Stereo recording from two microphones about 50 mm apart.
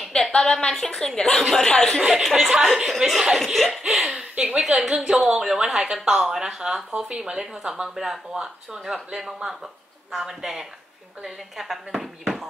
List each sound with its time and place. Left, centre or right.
0.4 s a woman's voice: centre
2.0 s speech: centre
2.7 s speech: centre
3.8 s laughter: centre
4.1 s chuckle: right
4.6 s speech: centre